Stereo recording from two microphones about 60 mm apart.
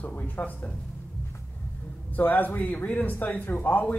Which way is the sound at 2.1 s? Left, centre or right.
Left.